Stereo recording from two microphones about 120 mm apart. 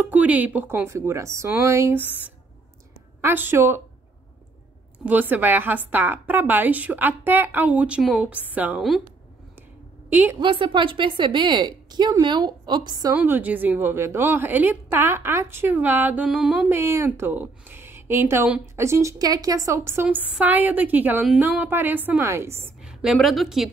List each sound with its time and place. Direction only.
0.0 s a woman's voice: 10° right (ahead or behind)
4.9 s a woman's voice: 15° right (ahead or behind)
10.0 s a woman's voice: 15° right (ahead or behind)
10.4 s a woman's voice: 45° right (ahead or behind)
13.1 s a woman's voice: 15° right (ahead or behind)
16.7 s a woman's voice: 20° right (ahead or behind)
22.8 s a woman's voice: 5° right (ahead or behind)